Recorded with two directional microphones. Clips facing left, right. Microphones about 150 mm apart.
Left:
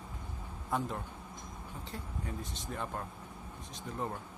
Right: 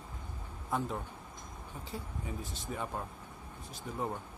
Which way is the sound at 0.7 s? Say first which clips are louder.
Even; centre (ahead or behind).